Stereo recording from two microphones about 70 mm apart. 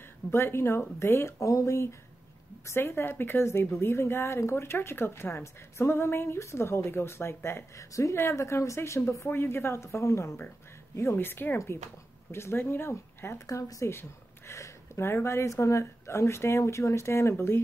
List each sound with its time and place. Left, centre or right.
0.3 s a woman's voice: left
13.5 s speech: left